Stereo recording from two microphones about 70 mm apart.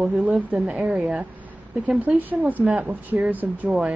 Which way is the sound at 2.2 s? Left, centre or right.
Right.